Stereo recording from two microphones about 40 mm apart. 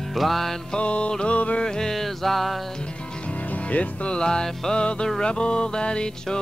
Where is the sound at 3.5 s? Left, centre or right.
Left.